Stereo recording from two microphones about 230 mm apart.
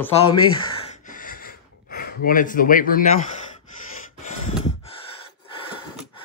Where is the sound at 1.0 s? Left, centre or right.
Left.